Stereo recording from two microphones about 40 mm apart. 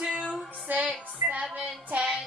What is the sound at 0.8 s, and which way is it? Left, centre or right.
A woman's voice, right.